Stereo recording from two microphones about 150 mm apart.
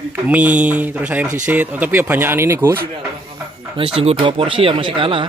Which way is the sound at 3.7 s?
40° right (ahead or behind).